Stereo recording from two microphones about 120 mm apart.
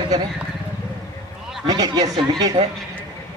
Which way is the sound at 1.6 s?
40° right (ahead or behind).